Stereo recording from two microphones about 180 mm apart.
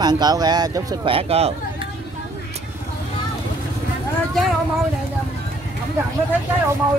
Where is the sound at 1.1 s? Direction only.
35° right (ahead or behind).